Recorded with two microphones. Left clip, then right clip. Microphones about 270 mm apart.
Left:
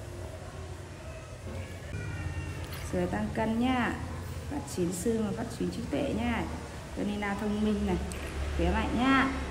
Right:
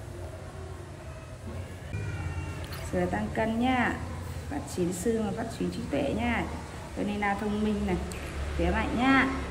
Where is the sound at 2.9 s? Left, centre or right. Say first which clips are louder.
Right 2 dB; centre.